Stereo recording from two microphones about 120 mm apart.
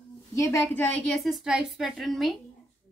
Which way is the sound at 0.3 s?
25° left (ahead or behind).